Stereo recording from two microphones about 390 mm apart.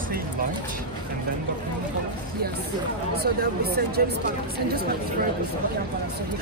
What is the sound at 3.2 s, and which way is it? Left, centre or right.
Speech, right.